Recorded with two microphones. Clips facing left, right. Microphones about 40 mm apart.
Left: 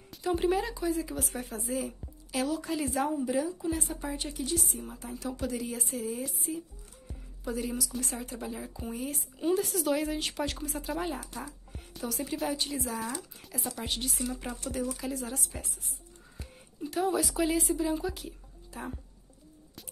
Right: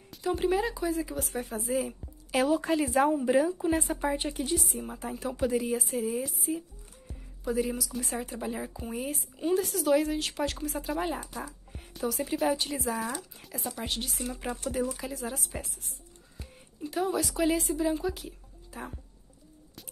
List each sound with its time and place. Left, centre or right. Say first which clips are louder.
0.1 s speech: even; centre
2.3 s a woman's voice: right 5 dB; right; by 8.2 s centre
8.5 s a woman's voice: right 4 dB; right
8.7 s speech: right 2 dB; centre
14.3 s a woman's voice: right 3 dB; centre
16.3 s speech: left 1 dB; centre